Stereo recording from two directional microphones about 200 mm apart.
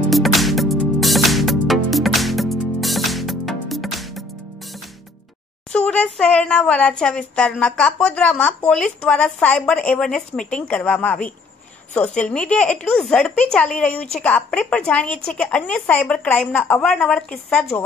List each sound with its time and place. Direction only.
0.1 s music: centre (ahead or behind)
5.7 s speech: 5° left (ahead or behind)